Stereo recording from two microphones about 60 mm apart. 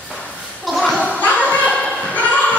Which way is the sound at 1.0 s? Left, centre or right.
Left.